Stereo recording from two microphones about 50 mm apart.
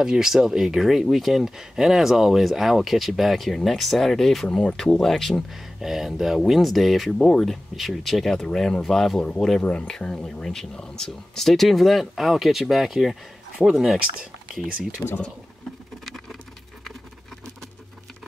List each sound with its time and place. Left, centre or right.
0.0 s speech: centre
5.5 s speech: centre
9.2 s speech: centre
15.0 s speech: left